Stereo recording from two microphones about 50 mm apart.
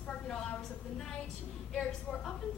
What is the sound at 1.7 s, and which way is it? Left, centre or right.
Speech, centre.